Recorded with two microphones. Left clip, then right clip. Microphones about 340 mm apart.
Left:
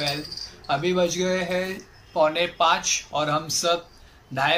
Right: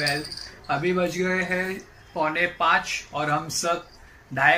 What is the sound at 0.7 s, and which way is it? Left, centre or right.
Speech, centre.